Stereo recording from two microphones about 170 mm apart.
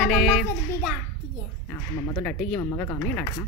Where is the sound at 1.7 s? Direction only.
10° left (ahead or behind).